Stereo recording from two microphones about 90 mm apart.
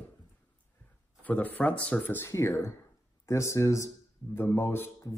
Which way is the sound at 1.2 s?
15° left (ahead or behind).